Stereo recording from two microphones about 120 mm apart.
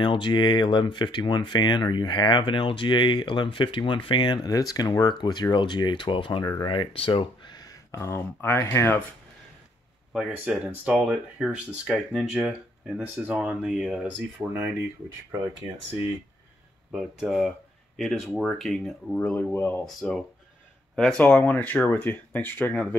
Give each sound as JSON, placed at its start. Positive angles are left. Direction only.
{"t": 0.0, "sound": "speech", "side_deg": 40}
{"t": 10.3, "sound": "speech", "side_deg": -10}
{"t": 14.5, "sound": "speech", "side_deg": -20}
{"t": 16.9, "sound": "speech", "side_deg": -5}
{"t": 19.3, "sound": "speech", "side_deg": 20}
{"t": 19.8, "sound": "speech", "side_deg": 0}